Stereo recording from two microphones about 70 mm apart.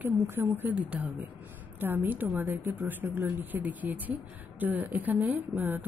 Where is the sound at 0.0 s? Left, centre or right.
Right.